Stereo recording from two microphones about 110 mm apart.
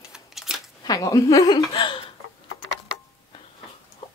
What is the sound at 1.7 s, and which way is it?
Speech, 55° left (ahead or behind).